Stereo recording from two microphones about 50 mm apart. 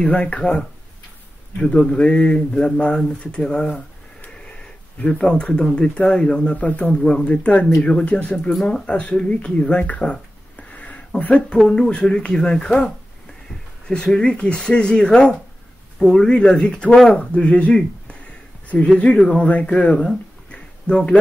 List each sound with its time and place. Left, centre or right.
0.0 s speech: left
1.6 s speech: centre
5.2 s speech: centre
6.9 s speech: centre
10.7 s a sound: left
11.1 s speech: left
11.7 s speech: centre
20.5 s a sound: left